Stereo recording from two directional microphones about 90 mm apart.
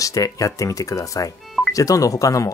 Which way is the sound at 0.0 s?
40° left (ahead or behind).